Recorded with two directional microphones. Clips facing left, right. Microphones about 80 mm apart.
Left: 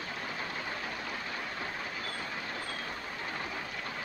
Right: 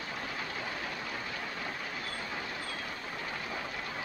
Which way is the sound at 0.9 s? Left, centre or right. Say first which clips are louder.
Even; centre.